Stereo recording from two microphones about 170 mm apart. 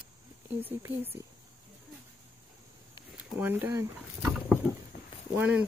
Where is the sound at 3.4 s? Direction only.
10° right (ahead or behind).